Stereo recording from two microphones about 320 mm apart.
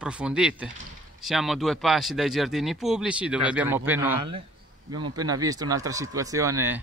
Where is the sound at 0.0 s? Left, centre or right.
Centre.